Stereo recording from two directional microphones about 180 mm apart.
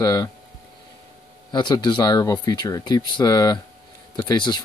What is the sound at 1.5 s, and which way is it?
Speech, 25° left (ahead or behind).